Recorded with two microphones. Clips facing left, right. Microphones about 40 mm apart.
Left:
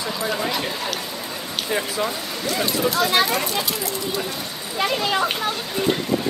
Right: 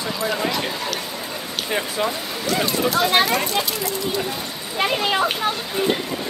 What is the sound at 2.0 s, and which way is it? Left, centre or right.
Speech, centre.